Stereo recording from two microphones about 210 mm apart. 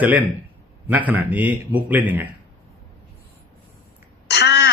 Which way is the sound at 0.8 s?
5° right (ahead or behind).